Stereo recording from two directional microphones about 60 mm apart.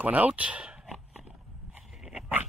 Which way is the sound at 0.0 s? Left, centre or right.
Right.